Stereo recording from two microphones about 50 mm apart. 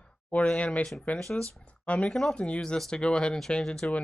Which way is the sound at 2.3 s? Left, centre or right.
Left.